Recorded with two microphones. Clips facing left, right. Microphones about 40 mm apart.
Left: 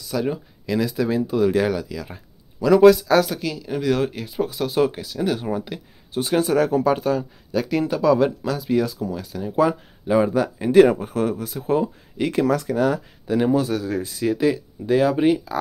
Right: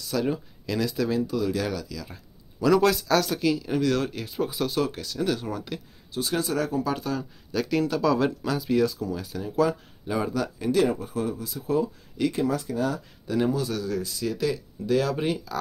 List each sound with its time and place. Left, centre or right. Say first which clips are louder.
0.0 s speech: left 2 dB; centre
1.3 s speech: left 8 dB; left
2.6 s speech: left 8 dB; centre
3.3 s speech: right 2 dB; centre
3.8 s speech: left 4 dB; centre
6.1 s speech: left 7 dB; left
7.5 s speech: left 3 dB; centre
9.5 s speech: left 4 dB; left
11.0 s speech: left 6 dB; left
11.5 s speech: left 4 dB; left
12.3 s speech: left 6 dB; left
13.5 s speech: left 6 dB; left